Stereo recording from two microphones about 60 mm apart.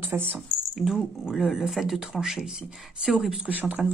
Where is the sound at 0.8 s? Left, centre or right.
Centre.